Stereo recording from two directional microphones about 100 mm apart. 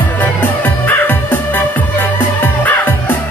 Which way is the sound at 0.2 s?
15° left (ahead or behind).